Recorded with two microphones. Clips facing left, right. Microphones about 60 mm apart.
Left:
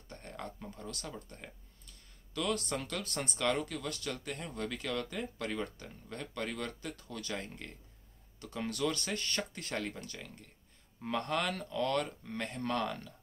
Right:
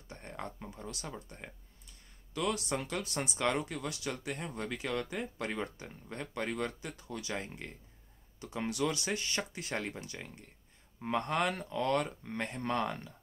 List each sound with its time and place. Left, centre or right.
0.2 s speech: right